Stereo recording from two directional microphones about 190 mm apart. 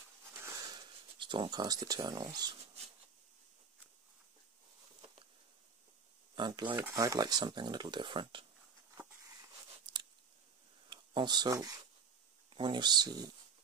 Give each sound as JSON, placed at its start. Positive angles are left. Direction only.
{"t": 0.3, "sound": "a sound", "side_deg": -15}
{"t": 6.3, "sound": "speech", "side_deg": -25}
{"t": 6.7, "sound": "speech", "side_deg": -15}
{"t": 10.9, "sound": "speech", "side_deg": -25}